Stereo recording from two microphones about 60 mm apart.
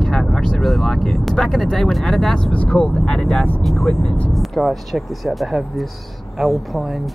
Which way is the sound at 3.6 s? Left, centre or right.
Centre.